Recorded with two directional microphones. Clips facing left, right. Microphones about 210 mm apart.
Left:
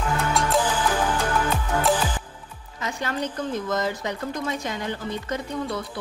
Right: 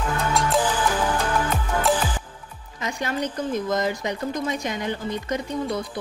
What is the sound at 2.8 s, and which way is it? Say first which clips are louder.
Speech: right 1 dB; 15° right (ahead or behind).